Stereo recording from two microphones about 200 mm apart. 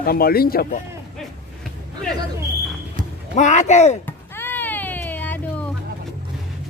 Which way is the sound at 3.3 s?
35° left (ahead or behind).